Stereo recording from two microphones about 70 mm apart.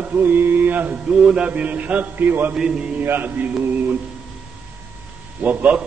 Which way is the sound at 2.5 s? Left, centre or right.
Centre.